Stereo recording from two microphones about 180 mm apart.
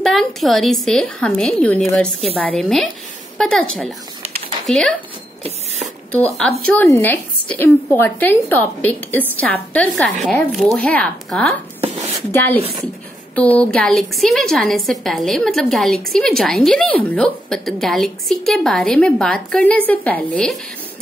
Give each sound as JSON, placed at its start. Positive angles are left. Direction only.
{"t": 0.0, "sound": "a woman's voice", "side_deg": 0}
{"t": 6.7, "sound": "a woman's voice", "side_deg": 10}
{"t": 11.8, "sound": "a sound", "side_deg": -35}
{"t": 12.3, "sound": "a woman's voice", "side_deg": 15}